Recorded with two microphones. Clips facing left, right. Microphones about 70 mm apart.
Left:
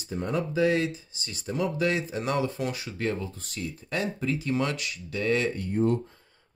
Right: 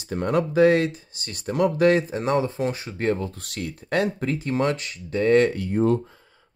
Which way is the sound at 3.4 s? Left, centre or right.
Right.